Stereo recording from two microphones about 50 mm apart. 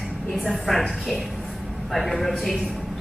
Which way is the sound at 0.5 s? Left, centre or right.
Centre.